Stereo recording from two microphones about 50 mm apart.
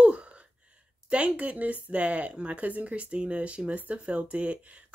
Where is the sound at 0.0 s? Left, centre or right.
Right.